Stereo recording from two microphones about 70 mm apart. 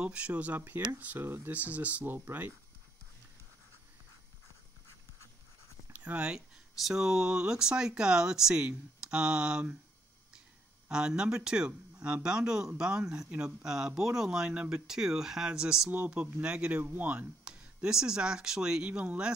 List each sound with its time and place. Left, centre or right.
0.0 s speech: centre
5.9 s speech: right
6.8 s speech: centre
10.9 s speech: centre
17.5 s speech: centre